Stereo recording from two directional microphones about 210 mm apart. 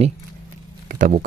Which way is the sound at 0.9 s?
40° right (ahead or behind).